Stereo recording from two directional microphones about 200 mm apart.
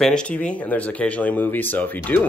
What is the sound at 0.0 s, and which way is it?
Speech, 5° left (ahead or behind).